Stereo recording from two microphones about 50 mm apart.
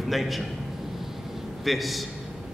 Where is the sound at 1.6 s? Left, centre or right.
Centre.